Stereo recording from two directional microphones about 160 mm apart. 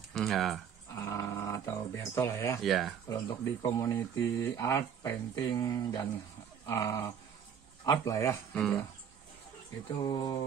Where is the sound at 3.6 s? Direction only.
15° left (ahead or behind).